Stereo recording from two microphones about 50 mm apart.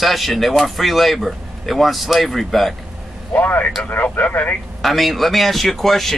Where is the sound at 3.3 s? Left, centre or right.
Left.